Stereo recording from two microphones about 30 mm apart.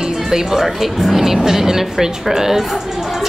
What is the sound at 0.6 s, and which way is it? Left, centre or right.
Speech, centre.